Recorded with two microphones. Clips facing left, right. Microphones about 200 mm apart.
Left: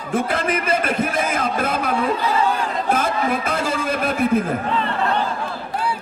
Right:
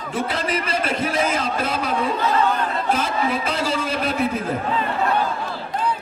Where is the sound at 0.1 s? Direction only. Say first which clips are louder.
Left 3 dB; 50° left (ahead or behind).